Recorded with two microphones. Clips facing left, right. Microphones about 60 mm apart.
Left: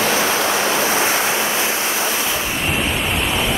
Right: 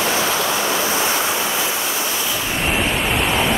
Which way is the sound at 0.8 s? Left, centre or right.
Left.